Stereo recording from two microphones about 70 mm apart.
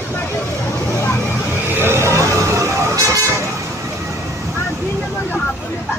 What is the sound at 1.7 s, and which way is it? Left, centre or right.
Vehicle, right.